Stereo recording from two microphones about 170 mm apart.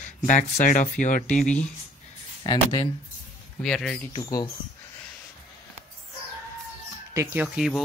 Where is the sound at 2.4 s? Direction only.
30° left (ahead or behind).